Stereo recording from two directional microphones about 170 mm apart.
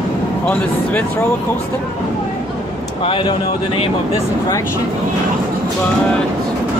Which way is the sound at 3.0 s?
30° left (ahead or behind).